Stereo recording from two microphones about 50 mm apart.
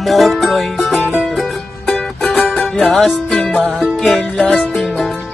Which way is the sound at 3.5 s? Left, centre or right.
Centre.